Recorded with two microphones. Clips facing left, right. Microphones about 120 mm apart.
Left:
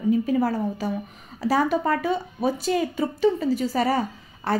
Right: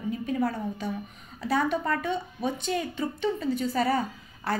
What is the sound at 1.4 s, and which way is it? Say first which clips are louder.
Speech: left 5 dB; 5° left (ahead or behind).